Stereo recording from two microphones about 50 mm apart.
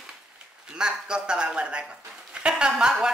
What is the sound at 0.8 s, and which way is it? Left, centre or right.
Speech, centre.